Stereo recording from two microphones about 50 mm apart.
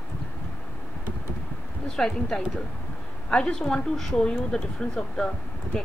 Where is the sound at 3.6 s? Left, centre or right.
Centre.